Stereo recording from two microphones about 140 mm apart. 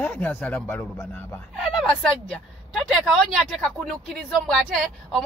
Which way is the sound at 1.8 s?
5° left (ahead or behind).